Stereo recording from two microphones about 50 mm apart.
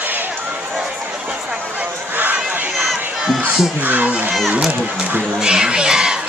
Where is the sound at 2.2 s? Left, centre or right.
Right.